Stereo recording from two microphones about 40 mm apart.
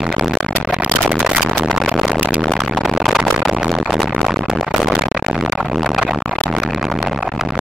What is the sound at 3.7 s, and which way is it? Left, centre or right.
Music, centre.